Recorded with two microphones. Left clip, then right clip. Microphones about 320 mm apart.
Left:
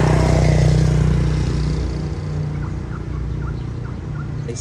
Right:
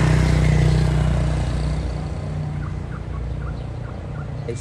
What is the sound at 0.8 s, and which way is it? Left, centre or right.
Vehicle, centre.